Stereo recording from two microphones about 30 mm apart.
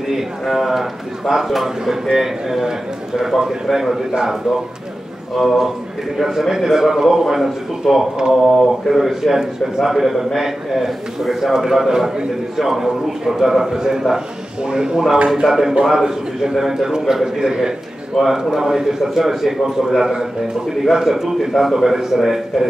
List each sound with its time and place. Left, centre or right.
0.1 s a man's voice: centre
5.3 s a man's voice: centre
11.6 s a man's voice: centre
15.4 s a man's voice: centre
18.1 s a man's voice: centre
21.6 s a man's voice: centre